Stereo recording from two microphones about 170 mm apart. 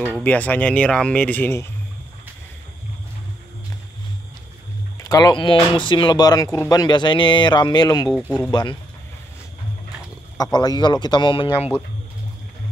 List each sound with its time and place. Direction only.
0.2 s speech: 10° left (ahead or behind)
5.0 s speech: 20° left (ahead or behind)
10.3 s speech: 25° left (ahead or behind)